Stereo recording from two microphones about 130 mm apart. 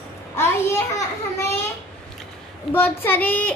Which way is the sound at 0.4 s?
20° left (ahead or behind).